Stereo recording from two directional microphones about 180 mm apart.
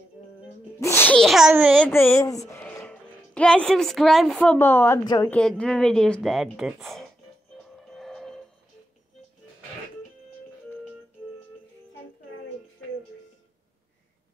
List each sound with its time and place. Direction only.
0.7 s sneeze: 15° left (ahead or behind); by 1.8 s 10° right (ahead or behind)
1.8 s speech: 10° left (ahead or behind)
2.5 s a sound: 10° left (ahead or behind)
4.6 s a woman's voice: 10° left (ahead or behind)
5.3 s speech: 5° left (ahead or behind)
7.6 s music: 5° left (ahead or behind)